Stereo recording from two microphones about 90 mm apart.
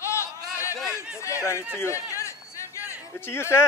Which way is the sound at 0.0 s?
30° left (ahead or behind).